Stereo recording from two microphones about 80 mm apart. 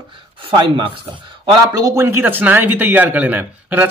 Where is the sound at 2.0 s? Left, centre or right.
Right.